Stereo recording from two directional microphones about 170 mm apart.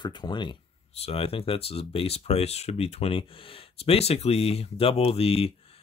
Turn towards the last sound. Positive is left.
turn(degrees=35)  # may be behind; listen again after turning